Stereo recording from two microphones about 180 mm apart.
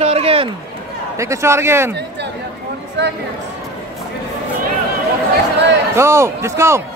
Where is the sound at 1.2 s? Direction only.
15° right (ahead or behind).